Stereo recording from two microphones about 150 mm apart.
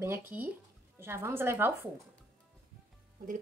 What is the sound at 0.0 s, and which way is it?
A woman's voice, 15° right (ahead or behind).